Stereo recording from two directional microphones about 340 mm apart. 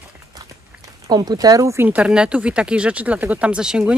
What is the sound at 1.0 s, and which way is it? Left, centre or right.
Speech, centre.